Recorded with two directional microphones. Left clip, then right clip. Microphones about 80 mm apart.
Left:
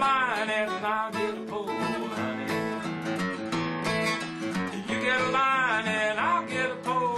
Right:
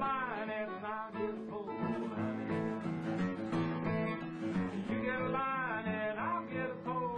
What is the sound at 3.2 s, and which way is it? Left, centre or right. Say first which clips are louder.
Music: left 7 dB; right.